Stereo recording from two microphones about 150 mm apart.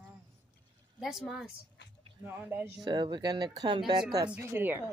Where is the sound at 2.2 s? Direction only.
15° right (ahead or behind).